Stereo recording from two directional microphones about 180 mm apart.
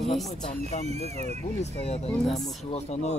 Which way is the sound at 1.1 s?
40° right (ahead or behind).